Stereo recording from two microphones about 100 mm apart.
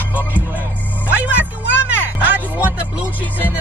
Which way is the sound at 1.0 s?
15° right (ahead or behind).